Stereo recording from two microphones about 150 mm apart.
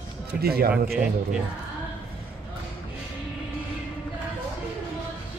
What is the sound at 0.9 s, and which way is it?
Speech, 5° right (ahead or behind).